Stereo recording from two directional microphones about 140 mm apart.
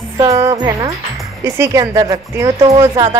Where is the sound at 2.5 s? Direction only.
40° right (ahead or behind).